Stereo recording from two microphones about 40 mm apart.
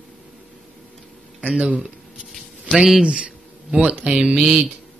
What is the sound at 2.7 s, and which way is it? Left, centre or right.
Speech, centre.